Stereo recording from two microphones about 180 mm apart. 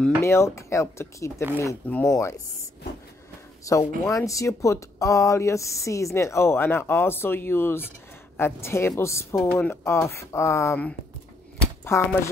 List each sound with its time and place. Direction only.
0.0 s speech: 15° left (ahead or behind)
3.7 s speech: 20° left (ahead or behind)
11.6 s a sound: 10° left (ahead or behind)